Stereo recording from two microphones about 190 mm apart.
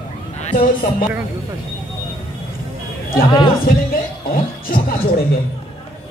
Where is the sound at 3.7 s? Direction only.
50° left (ahead or behind).